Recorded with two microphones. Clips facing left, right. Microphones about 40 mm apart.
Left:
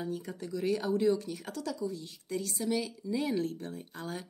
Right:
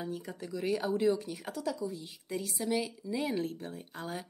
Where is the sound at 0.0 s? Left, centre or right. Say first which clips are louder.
Left 2 dB; centre.